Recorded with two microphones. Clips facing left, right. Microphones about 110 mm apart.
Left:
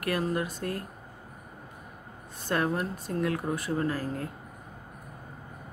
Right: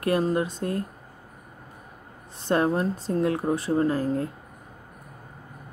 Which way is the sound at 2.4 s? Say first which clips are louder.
Right 5 dB; 30° right (ahead or behind).